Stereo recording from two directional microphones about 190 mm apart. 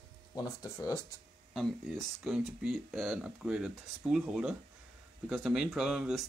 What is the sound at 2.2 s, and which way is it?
Speech, centre (ahead or behind).